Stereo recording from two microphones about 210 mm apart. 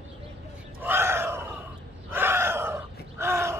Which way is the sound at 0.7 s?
10° right (ahead or behind).